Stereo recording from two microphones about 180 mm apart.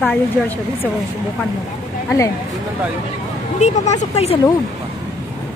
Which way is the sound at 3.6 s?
40° left (ahead or behind).